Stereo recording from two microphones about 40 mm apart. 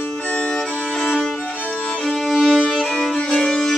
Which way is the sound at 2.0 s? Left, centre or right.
Centre.